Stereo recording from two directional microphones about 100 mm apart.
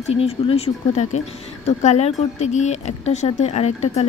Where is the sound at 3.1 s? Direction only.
90° left.